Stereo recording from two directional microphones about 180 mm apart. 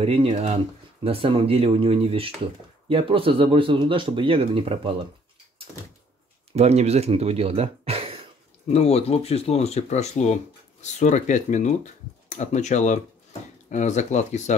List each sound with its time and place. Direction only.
0.0 s speech: 35° right (ahead or behind)
6.5 s speech: 35° right (ahead or behind)
8.7 s speech: 35° left (ahead or behind)